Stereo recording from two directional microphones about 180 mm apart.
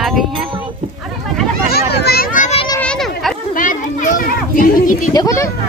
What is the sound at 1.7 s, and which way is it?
Children playing, 60° left (ahead or behind).